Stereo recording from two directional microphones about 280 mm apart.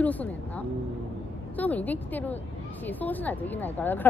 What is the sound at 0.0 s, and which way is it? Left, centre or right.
A woman's voice, centre.